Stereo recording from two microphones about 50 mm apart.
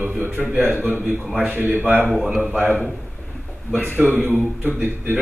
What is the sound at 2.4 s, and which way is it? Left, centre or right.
Speech, right.